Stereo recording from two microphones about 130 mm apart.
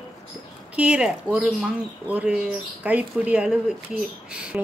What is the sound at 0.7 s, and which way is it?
A woman's voice, 10° right (ahead or behind).